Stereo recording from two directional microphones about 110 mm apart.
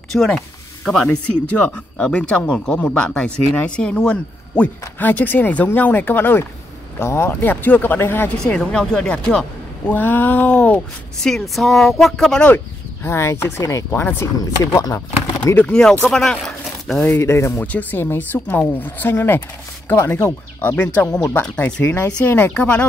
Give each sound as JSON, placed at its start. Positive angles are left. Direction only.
{"t": 0.1, "sound": "speech", "side_deg": 5}
{"t": 8.5, "sound": "speech", "side_deg": 5}
{"t": 11.2, "sound": "speech", "side_deg": 0}
{"t": 12.4, "sound": "speech", "side_deg": 20}
{"t": 15.5, "sound": "speech", "side_deg": 10}
{"t": 17.1, "sound": "speech", "side_deg": 25}